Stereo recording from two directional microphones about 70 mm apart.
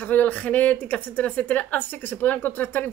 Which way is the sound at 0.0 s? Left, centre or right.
Left.